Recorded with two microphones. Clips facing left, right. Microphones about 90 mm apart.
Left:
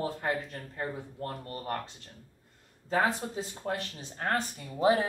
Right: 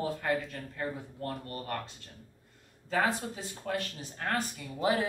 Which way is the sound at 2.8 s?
25° left (ahead or behind).